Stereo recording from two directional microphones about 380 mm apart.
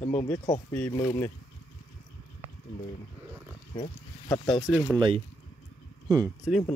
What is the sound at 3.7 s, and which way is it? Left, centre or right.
Pig, centre.